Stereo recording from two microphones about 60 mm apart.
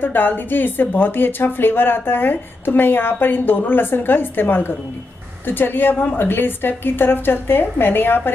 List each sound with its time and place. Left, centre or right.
0.0 s speech: left